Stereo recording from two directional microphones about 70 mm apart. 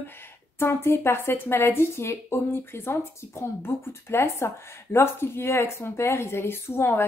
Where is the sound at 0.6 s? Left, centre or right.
Left.